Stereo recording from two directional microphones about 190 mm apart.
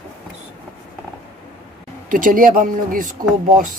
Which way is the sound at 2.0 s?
45° right (ahead or behind).